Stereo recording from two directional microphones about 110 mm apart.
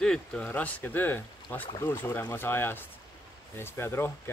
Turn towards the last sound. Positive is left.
turn(degrees=20)  # may be behind; listen again after turning